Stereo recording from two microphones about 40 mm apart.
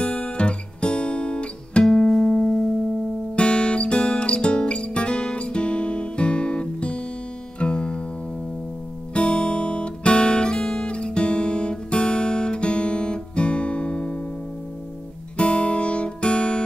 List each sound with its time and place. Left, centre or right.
0.0 s music: left
1.9 s music: centre
3.3 s music: left
9.1 s guitar: left
15.3 s music: left